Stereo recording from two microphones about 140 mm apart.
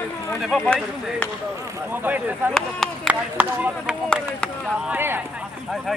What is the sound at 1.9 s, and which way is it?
Speech, 15° right (ahead or behind).